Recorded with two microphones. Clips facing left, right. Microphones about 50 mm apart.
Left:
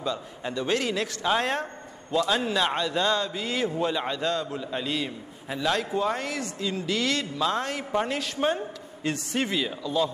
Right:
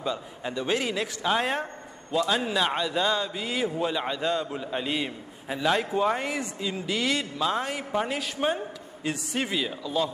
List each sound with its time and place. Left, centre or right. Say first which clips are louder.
0.4 s a man's voice: left 1 dB; centre
4.2 s a man's voice: even; centre